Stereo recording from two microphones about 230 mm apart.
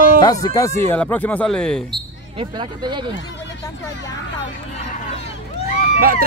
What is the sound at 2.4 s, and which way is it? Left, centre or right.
Speech, centre.